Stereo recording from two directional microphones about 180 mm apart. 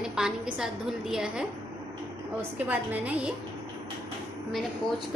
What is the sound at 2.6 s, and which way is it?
Speech, 10° right (ahead or behind).